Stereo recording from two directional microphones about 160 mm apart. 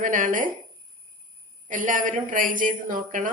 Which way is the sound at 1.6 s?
55° right (ahead or behind).